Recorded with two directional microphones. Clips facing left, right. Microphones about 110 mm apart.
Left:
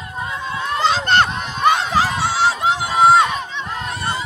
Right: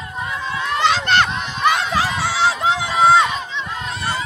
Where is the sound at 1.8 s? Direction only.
35° left (ahead or behind).